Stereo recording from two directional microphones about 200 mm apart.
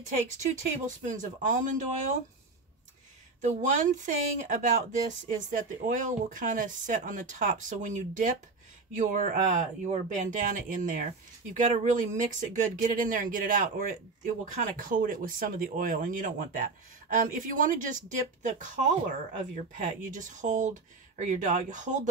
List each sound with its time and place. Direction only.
0.5 s speech: 40° right (ahead or behind)
3.3 s a man's voice: 40° right (ahead or behind)